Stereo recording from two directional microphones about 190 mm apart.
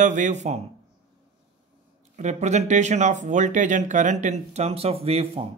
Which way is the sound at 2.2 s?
40° right (ahead or behind).